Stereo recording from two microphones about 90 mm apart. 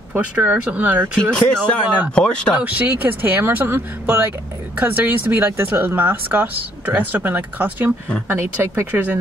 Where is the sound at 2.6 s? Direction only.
15° right (ahead or behind).